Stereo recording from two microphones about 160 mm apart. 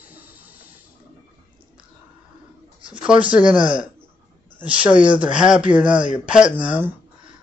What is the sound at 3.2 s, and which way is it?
Speech, 5° right (ahead or behind).